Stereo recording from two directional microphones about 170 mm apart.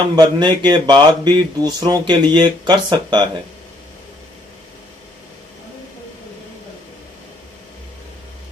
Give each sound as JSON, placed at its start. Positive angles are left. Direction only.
{"t": 0.1, "sound": "speech", "side_deg": -25}